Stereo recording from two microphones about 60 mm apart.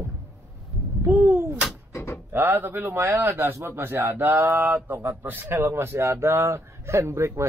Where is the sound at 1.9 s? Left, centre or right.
Left.